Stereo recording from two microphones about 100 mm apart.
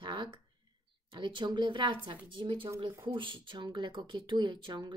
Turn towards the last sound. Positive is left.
turn(degrees=-50)  # may be behind; listen again after turning